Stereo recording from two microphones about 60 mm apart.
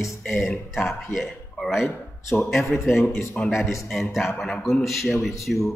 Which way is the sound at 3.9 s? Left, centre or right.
Centre.